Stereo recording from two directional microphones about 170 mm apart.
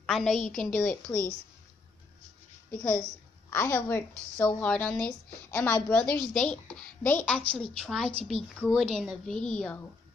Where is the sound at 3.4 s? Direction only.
15° left (ahead or behind).